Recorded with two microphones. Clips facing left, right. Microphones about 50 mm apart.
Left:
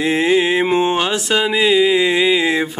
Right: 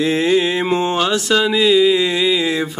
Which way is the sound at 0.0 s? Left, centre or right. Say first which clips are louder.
Even; left.